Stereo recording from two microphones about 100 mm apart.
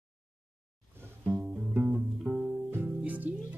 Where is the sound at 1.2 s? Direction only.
20° right (ahead or behind).